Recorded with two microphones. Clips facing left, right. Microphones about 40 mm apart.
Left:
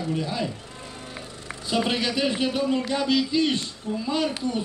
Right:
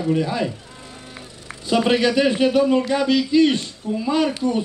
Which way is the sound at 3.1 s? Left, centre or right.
Centre.